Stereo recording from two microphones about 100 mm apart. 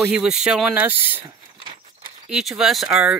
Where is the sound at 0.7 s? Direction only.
20° right (ahead or behind).